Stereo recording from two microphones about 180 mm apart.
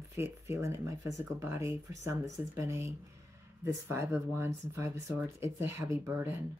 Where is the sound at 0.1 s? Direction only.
15° right (ahead or behind).